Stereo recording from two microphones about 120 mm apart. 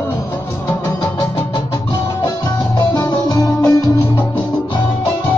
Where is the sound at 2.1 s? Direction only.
30° left (ahead or behind).